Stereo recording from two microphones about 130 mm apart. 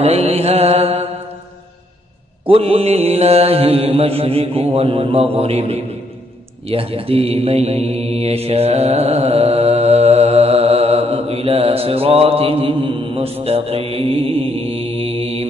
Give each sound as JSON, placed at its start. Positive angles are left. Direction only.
{"t": 0.0, "sound": "mantra", "side_deg": -50}
{"t": 2.4, "sound": "mantra", "side_deg": -50}